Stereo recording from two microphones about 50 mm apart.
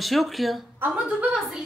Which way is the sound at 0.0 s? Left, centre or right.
Centre.